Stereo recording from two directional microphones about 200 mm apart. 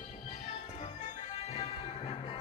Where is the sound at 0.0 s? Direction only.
30° left (ahead or behind).